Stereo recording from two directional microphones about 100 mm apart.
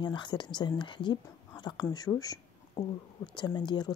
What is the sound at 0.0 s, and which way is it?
Speech, 50° left (ahead or behind).